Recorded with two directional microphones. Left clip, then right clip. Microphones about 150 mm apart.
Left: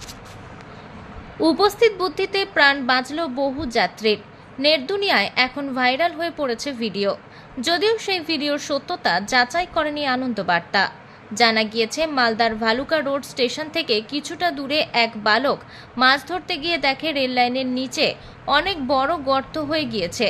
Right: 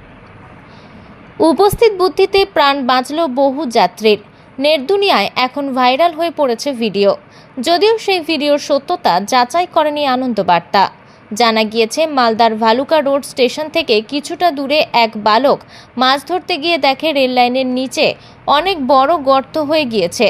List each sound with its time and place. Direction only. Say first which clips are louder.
1.4 s a woman's voice: right 7 dB; 35° right (ahead or behind)